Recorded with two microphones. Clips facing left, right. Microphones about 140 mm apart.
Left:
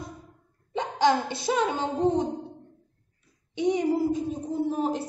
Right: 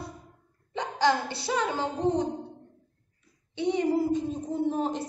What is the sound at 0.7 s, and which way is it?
Hiccup, 20° left (ahead or behind).